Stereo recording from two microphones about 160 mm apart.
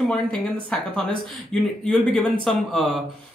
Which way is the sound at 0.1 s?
5° left (ahead or behind).